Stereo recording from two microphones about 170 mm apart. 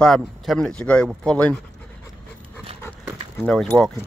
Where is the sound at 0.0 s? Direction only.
Centre (ahead or behind).